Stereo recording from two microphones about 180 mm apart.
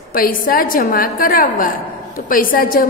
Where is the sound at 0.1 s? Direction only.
50° left (ahead or behind).